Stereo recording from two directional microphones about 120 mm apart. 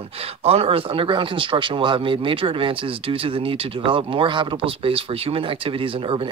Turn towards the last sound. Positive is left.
turn(degrees=-45)  # may be behind; listen again after turning